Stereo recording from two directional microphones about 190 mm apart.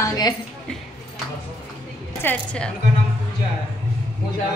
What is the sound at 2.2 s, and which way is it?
Speech, 5° left (ahead or behind).